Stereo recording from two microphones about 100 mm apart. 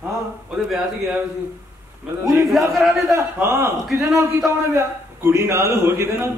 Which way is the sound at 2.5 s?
Centre (ahead or behind).